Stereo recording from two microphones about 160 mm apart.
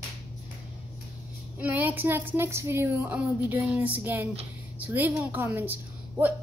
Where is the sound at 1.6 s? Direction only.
10° right (ahead or behind).